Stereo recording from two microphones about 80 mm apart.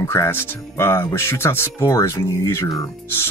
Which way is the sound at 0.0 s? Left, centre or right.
Left.